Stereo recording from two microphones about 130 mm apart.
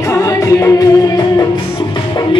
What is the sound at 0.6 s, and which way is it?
Music, 25° left (ahead or behind).